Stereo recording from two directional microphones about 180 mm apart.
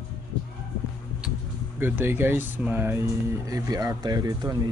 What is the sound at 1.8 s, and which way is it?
Speech, 10° right (ahead or behind).